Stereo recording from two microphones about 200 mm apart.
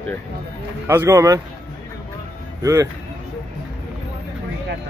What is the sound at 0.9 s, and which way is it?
Speech, 15° right (ahead or behind).